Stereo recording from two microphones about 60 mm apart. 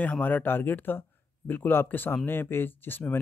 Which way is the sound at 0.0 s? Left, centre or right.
Left.